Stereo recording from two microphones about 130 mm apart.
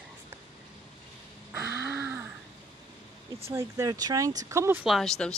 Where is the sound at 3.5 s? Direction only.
25° right (ahead or behind).